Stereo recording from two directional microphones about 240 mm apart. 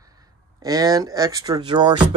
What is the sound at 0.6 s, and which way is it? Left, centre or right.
Speech, centre.